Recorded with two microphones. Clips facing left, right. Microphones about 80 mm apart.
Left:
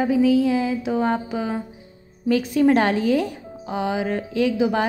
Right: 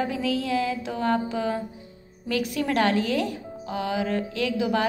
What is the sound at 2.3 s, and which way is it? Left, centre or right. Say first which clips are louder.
Speech: left 9 dB; left.